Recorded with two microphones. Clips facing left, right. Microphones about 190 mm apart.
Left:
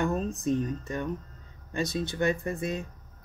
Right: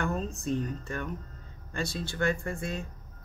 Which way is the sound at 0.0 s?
20° left (ahead or behind).